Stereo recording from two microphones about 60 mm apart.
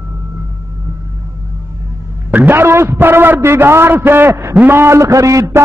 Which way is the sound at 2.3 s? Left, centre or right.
Right.